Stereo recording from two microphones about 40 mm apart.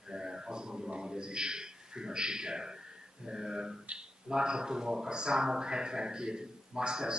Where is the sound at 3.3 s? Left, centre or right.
Centre.